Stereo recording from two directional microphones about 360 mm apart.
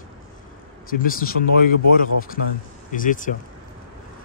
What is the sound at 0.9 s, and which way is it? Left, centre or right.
Speech, left.